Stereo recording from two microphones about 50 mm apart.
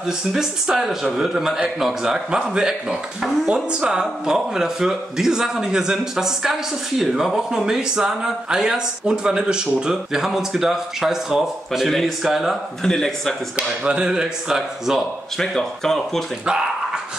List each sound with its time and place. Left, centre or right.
0.3 s speech: centre
11.9 s speech: centre
12.3 s speech: centre
12.8 s speech: centre
13.8 s speech: centre
15.3 s speech: centre
16.4 s dog: centre